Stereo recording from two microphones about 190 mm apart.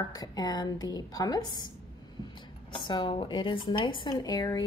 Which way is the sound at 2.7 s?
25° left (ahead or behind).